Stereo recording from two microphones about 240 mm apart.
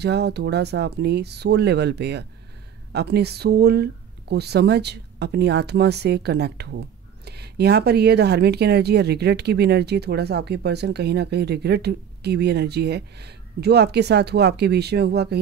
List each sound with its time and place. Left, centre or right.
0.0 s speech: right